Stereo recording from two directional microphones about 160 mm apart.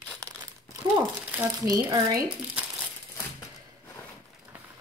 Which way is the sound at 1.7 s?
20° right (ahead or behind).